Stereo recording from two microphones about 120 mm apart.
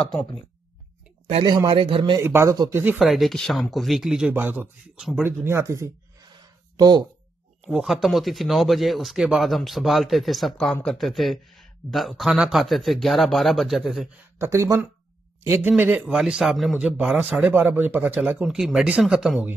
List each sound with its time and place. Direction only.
1.7 s a man's voice: 50° right (ahead or behind)
2.1 s a man's voice: 20° right (ahead or behind)
3.0 s speech: centre (ahead or behind)
4.3 s a man's voice: 15° right (ahead or behind)
5.2 s speech: 20° right (ahead or behind)
6.3 s a sound: 35° right (ahead or behind)
7.6 s speech: 5° right (ahead or behind)
14.4 s speech: 25° right (ahead or behind)
15.7 s a man's voice: 10° right (ahead or behind)